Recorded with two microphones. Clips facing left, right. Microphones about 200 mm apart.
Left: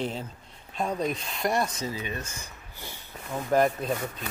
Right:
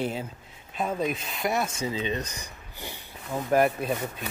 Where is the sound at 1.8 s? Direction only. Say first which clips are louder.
Right 4 dB; 20° right (ahead or behind).